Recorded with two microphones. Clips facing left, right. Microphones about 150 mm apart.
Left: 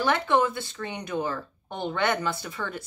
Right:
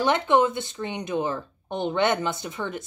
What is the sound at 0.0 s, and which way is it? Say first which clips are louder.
Speech: right 3 dB; 20° right (ahead or behind).